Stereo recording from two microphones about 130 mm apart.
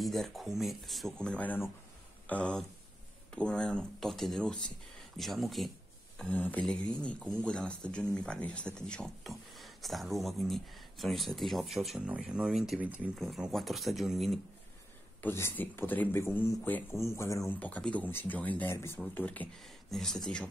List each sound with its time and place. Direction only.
0.0 s speech: centre (ahead or behind)
13.1 s speech: centre (ahead or behind)
15.2 s speech: 15° left (ahead or behind)
17.6 s speech: 10° left (ahead or behind)